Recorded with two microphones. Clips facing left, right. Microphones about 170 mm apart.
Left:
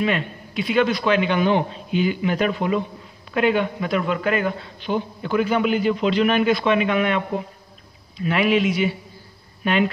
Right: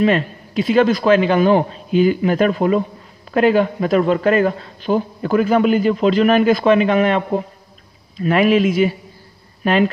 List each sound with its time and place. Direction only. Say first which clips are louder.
0.0 s a man's voice: right 7 dB; 35° right (ahead or behind)